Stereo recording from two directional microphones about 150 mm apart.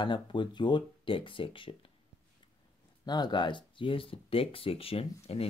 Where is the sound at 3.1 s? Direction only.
30° left (ahead or behind).